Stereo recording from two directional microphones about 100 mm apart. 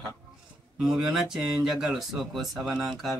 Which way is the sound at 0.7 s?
5° right (ahead or behind).